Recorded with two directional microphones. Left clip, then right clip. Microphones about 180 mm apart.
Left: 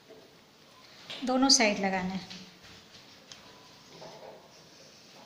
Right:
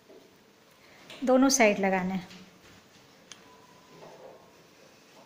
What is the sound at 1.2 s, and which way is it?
A woman's voice, 60° right (ahead or behind).